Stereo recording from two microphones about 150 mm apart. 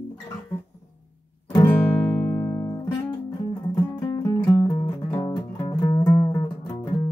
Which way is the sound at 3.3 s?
30° left (ahead or behind).